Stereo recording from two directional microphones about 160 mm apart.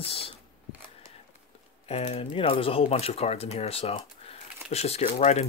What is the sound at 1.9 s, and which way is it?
Speech, 40° left (ahead or behind).